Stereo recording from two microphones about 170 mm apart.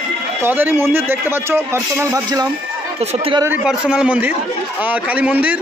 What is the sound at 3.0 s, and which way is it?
Speech, 35° right (ahead or behind).